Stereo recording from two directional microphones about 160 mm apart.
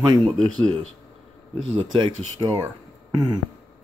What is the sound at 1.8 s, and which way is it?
Speech, 35° right (ahead or behind).